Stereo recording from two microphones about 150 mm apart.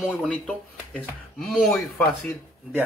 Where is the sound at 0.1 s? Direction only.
10° left (ahead or behind).